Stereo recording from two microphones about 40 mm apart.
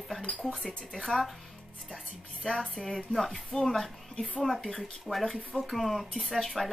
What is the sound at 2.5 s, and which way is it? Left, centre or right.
A woman's voice, centre.